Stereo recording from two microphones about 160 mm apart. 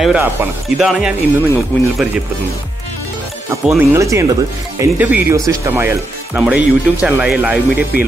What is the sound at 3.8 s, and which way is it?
Speech, 20° right (ahead or behind).